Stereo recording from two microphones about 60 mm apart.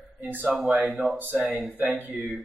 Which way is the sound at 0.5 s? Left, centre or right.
Centre.